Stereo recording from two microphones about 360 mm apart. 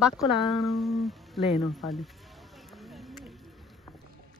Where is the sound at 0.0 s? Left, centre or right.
Centre.